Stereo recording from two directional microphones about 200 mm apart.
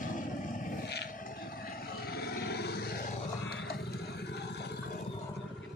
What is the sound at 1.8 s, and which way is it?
Vehicle, 50° left (ahead or behind).